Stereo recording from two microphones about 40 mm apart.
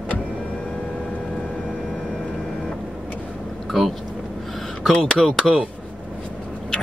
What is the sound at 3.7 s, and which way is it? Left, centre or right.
Vehicle, centre.